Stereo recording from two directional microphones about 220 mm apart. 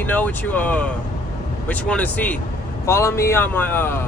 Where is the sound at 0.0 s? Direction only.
10° left (ahead or behind).